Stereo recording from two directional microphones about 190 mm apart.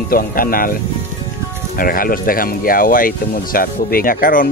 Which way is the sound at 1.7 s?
50° left (ahead or behind).